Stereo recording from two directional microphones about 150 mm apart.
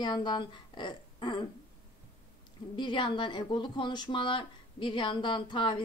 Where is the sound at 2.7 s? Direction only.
35° left (ahead or behind).